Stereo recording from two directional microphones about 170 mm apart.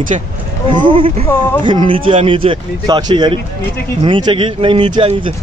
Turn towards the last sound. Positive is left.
turn(degrees=-30)  # may be behind; listen again after turning